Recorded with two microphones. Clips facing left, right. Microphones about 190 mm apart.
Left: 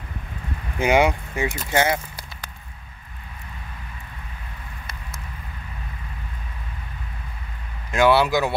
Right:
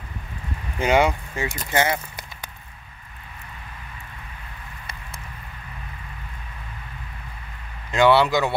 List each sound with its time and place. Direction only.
0.7 s speech: 15° left (ahead or behind)
7.9 s speech: 5° left (ahead or behind)